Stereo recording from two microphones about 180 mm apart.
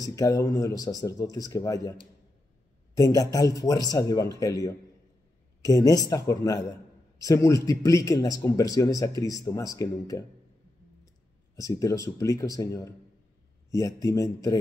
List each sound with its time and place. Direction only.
0.0 s speech: 20° left (ahead or behind)
11.5 s speech: 20° left (ahead or behind)